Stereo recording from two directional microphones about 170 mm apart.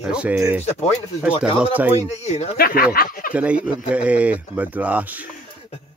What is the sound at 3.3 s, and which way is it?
Speech, 10° right (ahead or behind).